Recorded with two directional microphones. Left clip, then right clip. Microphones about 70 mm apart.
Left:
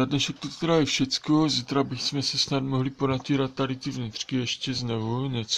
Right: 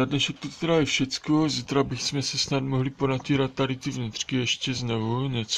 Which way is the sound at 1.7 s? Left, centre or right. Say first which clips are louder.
Right 1 dB; centre.